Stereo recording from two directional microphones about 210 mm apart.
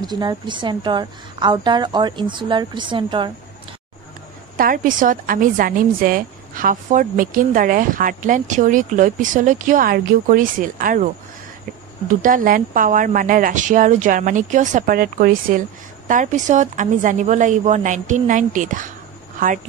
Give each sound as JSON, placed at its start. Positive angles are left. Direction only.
{"t": 0.0, "sound": "a woman's voice", "side_deg": -20}
{"t": 4.6, "sound": "a woman's voice", "side_deg": -40}
{"t": 12.2, "sound": "a woman's voice", "side_deg": -40}